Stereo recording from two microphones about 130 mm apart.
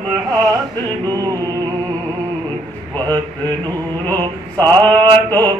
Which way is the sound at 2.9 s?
15° left (ahead or behind).